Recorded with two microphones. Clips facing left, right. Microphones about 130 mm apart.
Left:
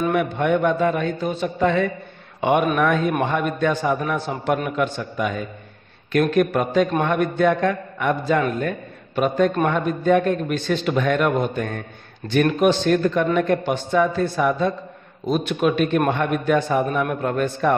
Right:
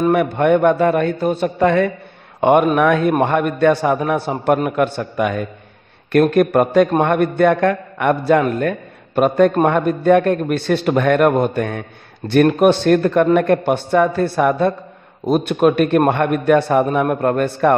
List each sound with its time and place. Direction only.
0.1 s a man's voice: 60° right (ahead or behind)
8.5 s a man's voice: 55° right (ahead or behind)
12.3 s a man's voice: 50° right (ahead or behind)
15.2 s a man's voice: 50° right (ahead or behind)
17.0 s a man's voice: 50° right (ahead or behind)